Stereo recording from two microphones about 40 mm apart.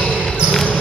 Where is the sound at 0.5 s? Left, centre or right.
Centre.